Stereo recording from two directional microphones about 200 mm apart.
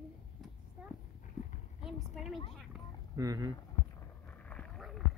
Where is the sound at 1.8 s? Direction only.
Centre (ahead or behind).